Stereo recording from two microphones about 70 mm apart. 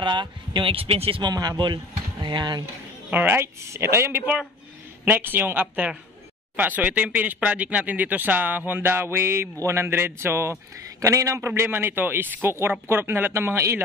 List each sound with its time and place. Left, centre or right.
0.1 s speech: right
1.2 s speech: right
1.6 s speech: right
3.1 s speech: right
3.7 s a man's voice: right